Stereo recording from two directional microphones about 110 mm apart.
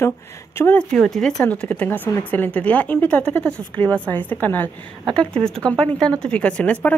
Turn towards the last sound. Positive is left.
turn(degrees=10)  # may be behind; listen again after turning